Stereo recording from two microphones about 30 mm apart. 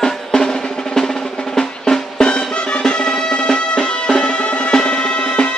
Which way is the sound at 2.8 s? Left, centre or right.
Left.